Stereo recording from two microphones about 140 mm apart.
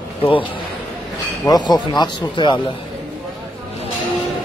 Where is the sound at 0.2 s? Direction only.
40° left (ahead or behind).